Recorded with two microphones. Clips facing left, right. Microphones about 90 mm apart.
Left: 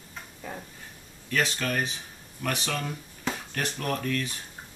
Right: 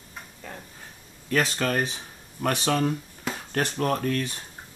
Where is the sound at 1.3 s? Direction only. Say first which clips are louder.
Right 3 dB; 40° right (ahead or behind).